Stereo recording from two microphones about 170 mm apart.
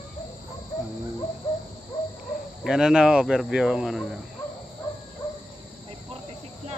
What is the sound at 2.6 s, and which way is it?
Speech, 5° right (ahead or behind).